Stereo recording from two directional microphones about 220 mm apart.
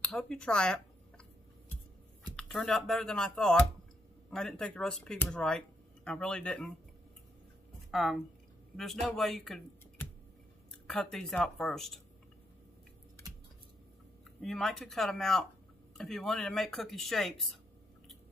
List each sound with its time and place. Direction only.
0.0 s speech: 5° left (ahead or behind)
2.3 s speech: 5° left (ahead or behind)
7.9 s speech: centre (ahead or behind)
10.9 s speech: centre (ahead or behind)
14.4 s speech: centre (ahead or behind)